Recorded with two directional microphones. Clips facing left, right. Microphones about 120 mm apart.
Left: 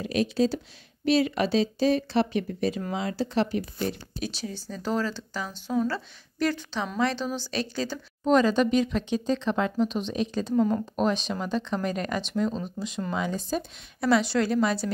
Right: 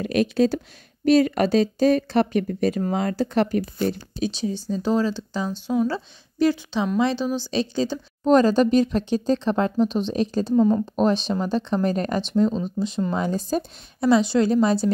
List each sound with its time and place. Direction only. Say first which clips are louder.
0.0 s speech: right 4 dB; 60° right (ahead or behind)
1.0 s speech: right 6 dB; 45° right (ahead or behind)
4.2 s a woman's voice: right 10 dB; 20° right (ahead or behind)
8.3 s speech: right 5 dB; 40° right (ahead or behind)
10.5 s a woman's voice: right 5 dB; 20° right (ahead or behind)
11.0 s speech: right 5 dB; 35° right (ahead or behind)
14.0 s a woman's voice: right 5 dB; 20° right (ahead or behind)